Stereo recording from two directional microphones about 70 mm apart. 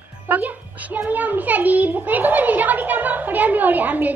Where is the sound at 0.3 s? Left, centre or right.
Right.